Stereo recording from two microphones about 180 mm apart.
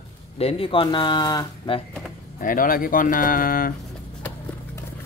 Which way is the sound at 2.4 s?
50° left (ahead or behind).